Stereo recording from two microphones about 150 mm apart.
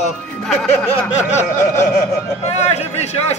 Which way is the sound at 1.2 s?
50° left (ahead or behind).